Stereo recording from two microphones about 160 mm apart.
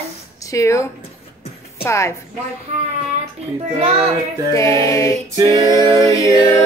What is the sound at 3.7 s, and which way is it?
Speech, 40° right (ahead or behind).